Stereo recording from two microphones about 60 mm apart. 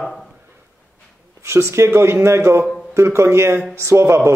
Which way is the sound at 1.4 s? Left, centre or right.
Right.